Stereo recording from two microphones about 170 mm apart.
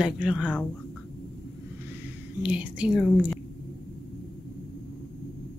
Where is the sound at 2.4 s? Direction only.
5° right (ahead or behind).